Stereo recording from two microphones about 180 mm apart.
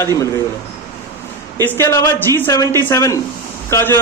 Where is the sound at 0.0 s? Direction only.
15° left (ahead or behind).